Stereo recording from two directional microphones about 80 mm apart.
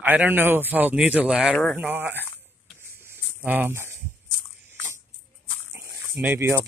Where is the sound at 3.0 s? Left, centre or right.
Right.